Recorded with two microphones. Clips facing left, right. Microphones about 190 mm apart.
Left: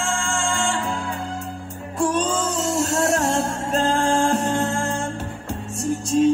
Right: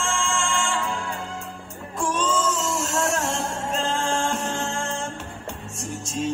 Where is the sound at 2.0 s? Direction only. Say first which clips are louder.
Left 3 dB; 35° left (ahead or behind).